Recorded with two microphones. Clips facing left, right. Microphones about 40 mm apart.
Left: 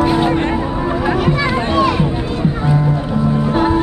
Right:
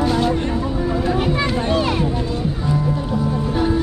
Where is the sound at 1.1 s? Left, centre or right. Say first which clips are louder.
Left 4 dB; left.